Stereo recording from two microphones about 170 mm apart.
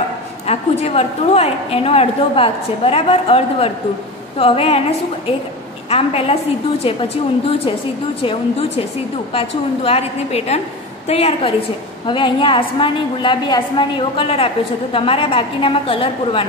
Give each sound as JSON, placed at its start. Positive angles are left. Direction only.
{"t": 0.5, "sound": "a woman's voice", "side_deg": 40}
{"t": 5.9, "sound": "a woman's voice", "side_deg": 35}